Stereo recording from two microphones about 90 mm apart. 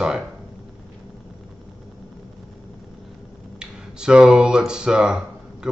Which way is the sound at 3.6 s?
10° right (ahead or behind).